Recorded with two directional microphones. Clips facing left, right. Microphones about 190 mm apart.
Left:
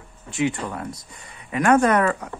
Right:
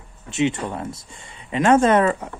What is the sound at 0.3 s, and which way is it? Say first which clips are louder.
Speech: right 2 dB; 25° right (ahead or behind).